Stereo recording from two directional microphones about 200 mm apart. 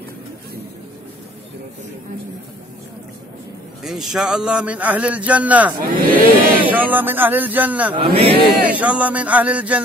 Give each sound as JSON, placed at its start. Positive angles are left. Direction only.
{"t": 3.8, "sound": "a man's voice", "side_deg": 0}
{"t": 5.8, "sound": "speech", "side_deg": -45}
{"t": 6.7, "sound": "a man's voice", "side_deg": -10}
{"t": 7.9, "sound": "speech", "side_deg": -25}
{"t": 8.6, "sound": "a man's voice", "side_deg": -5}